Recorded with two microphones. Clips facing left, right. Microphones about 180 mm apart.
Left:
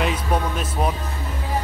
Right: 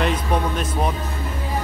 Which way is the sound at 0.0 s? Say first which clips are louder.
Right 1 dB; 5° left (ahead or behind).